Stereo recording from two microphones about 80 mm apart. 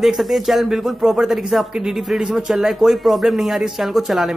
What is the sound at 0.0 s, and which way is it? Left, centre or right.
A man's voice, centre.